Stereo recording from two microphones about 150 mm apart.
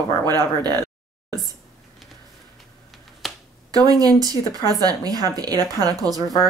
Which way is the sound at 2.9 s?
Centre (ahead or behind).